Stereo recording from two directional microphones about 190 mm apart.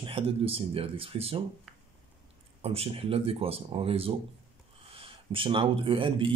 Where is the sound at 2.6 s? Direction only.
30° right (ahead or behind).